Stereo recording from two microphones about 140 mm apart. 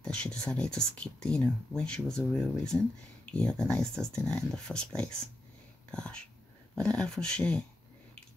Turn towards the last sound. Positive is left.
turn(degrees=10)  # may be behind; listen again after turning